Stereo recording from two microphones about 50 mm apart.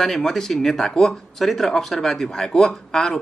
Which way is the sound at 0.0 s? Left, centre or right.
Centre.